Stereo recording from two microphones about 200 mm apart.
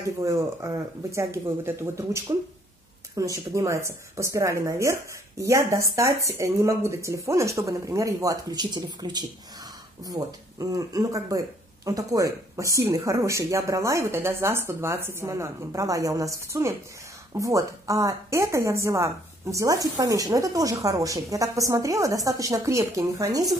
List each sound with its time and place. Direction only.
0.2 s a woman's voice: 15° right (ahead or behind)